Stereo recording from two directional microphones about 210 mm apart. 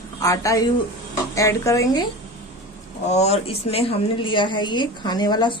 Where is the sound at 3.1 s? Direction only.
30° left (ahead or behind).